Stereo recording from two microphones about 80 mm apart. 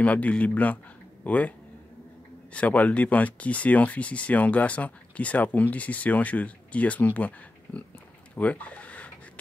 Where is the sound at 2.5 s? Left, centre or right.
Centre.